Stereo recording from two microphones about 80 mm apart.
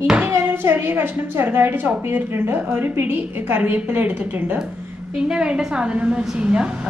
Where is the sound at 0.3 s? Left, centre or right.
Right.